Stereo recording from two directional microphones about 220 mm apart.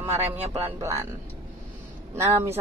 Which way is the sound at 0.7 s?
15° right (ahead or behind).